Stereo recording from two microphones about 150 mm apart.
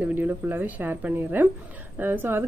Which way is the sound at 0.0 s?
10° right (ahead or behind).